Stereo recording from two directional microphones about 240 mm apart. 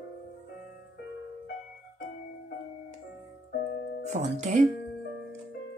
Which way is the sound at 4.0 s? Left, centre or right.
Right.